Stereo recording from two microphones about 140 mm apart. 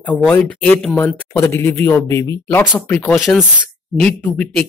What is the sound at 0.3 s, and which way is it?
Speech, 10° left (ahead or behind).